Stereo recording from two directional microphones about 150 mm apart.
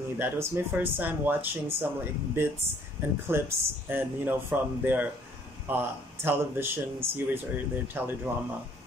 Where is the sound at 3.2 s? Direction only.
15° right (ahead or behind).